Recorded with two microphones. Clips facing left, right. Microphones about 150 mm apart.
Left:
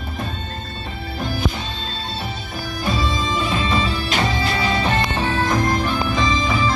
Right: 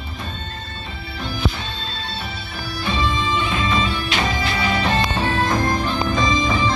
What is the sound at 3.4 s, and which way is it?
Bagpipes, 35° left (ahead or behind).